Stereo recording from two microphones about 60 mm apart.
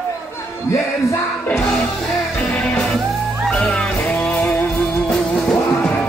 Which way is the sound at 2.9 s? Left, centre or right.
Centre.